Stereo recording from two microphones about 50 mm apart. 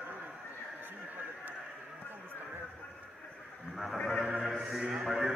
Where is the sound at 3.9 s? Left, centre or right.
Centre.